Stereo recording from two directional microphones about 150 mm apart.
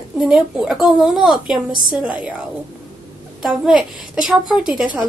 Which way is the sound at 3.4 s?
5° right (ahead or behind).